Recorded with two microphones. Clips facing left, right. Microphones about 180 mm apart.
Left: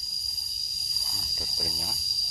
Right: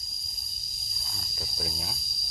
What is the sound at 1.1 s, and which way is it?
Cricket, centre (ahead or behind).